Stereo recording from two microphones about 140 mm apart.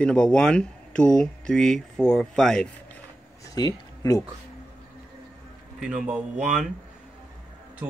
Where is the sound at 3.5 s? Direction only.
25° left (ahead or behind).